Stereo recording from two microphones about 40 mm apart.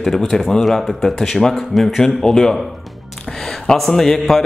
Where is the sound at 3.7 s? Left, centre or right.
Centre.